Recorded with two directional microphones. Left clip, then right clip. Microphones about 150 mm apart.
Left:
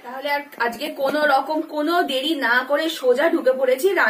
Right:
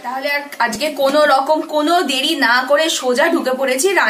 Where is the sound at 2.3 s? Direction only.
5° right (ahead or behind).